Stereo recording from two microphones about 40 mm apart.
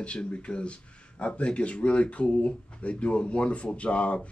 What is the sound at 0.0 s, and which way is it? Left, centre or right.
Speech, left.